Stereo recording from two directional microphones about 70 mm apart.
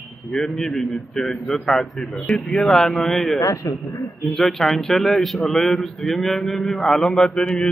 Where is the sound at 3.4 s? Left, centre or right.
Left.